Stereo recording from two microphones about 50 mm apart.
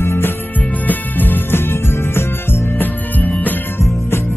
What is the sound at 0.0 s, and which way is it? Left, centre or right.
Music, left.